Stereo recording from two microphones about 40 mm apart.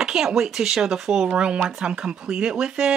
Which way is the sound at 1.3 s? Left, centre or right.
Right.